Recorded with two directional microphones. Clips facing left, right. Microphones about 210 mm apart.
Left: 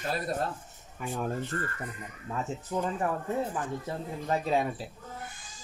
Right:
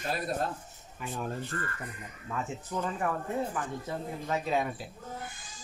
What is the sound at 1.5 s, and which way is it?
Speech, 35° left (ahead or behind).